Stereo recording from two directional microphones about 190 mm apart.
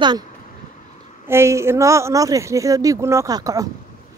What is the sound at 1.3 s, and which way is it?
A woman's voice, 15° right (ahead or behind).